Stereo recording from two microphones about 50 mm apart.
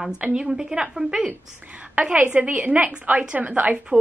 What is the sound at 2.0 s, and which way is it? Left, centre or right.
Speech, right.